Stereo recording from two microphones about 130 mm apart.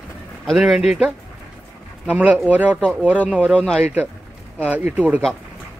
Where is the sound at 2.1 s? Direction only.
10° right (ahead or behind).